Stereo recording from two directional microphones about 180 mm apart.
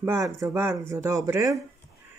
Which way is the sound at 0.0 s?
15° right (ahead or behind).